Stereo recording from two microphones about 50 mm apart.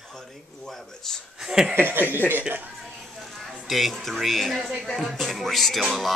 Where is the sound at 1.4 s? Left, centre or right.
Centre.